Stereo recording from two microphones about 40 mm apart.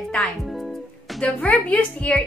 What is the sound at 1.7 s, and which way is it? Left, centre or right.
Speech, left.